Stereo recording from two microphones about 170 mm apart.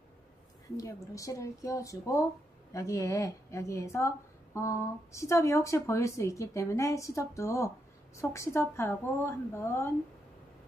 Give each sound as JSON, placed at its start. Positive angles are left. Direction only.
{"t": 0.7, "sound": "speech", "side_deg": 20}